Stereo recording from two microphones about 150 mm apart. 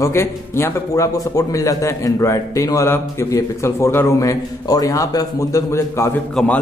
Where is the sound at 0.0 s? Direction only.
20° left (ahead or behind).